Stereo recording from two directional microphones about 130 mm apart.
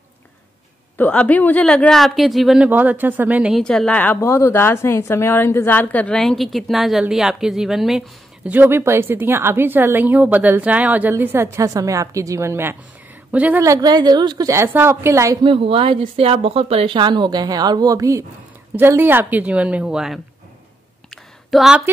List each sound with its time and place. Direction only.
0.9 s a woman's voice: 10° left (ahead or behind)
2.7 s a woman's voice: 15° right (ahead or behind)
3.5 s a woman's voice: 5° left (ahead or behind)
8.5 s a woman's voice: 15° right (ahead or behind)
13.6 s a woman's voice: 25° right (ahead or behind)
15.4 s speech: 45° right (ahead or behind); by 18.2 s 25° right (ahead or behind)
18.8 s a woman's voice: 15° right (ahead or behind)
21.1 s a sound: centre (ahead or behind)